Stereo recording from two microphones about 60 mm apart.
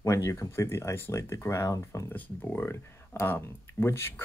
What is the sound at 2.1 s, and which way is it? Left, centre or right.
Speech, left.